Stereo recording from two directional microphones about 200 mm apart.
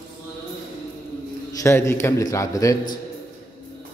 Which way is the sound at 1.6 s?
15° left (ahead or behind).